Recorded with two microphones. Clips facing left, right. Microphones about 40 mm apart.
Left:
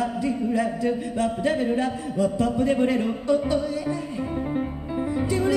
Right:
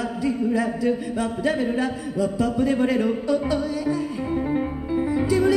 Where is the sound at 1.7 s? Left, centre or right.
Left.